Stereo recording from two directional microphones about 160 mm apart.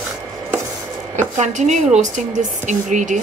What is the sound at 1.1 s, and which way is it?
A woman's voice, 50° right (ahead or behind).